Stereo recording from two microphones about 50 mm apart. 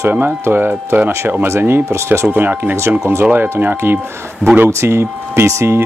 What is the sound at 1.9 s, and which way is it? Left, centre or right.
Speech, right.